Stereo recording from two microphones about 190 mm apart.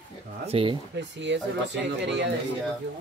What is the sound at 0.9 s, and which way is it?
Speech, 65° right (ahead or behind).